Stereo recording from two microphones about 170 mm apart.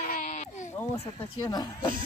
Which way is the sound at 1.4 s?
25° left (ahead or behind).